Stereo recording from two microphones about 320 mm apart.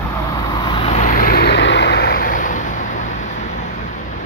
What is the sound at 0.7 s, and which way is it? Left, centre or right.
Vehicle, centre.